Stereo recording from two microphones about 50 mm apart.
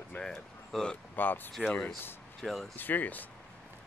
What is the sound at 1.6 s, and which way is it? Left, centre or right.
Speech, left.